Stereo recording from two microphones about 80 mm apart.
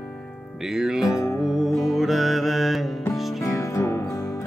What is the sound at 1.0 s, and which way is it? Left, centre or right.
Music, left.